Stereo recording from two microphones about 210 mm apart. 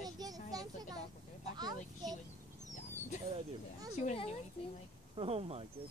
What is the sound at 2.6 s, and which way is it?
Dog, 35° left (ahead or behind).